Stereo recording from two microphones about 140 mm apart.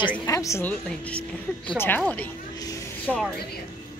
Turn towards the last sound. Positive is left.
turn(degrees=0)  # may be behind; listen again after turning